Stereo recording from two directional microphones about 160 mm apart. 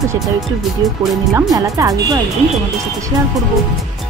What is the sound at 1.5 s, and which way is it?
Speech, 20° right (ahead or behind).